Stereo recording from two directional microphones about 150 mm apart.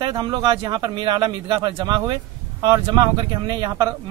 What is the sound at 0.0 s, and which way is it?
A man's voice, 30° right (ahead or behind).